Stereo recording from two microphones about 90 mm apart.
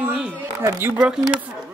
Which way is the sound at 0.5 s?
25° right (ahead or behind).